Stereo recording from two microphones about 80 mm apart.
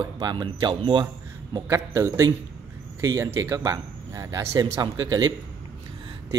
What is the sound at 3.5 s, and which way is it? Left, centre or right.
A man's voice, right.